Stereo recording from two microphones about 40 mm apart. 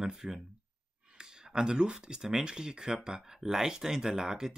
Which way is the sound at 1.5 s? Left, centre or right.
Right.